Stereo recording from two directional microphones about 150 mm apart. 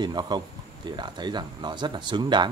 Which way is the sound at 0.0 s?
30° right (ahead or behind).